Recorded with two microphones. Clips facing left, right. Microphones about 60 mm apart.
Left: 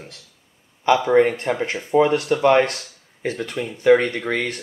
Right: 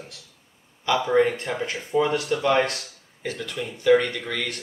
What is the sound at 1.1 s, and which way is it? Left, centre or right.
Speech, left.